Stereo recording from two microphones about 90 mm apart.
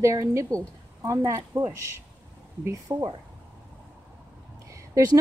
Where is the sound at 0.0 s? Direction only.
35° right (ahead or behind).